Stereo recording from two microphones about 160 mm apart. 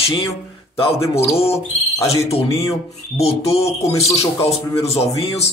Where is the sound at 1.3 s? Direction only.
40° left (ahead or behind).